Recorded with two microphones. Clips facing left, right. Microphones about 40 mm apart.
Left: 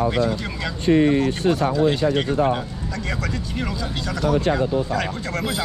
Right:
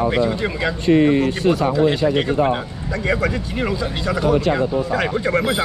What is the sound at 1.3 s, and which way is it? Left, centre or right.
Speech, right.